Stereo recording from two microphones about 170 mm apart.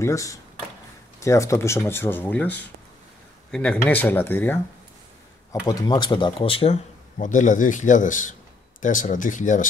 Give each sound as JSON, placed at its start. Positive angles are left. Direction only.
{"t": 0.0, "sound": "speech", "side_deg": 20}
{"t": 3.5, "sound": "speech", "side_deg": 5}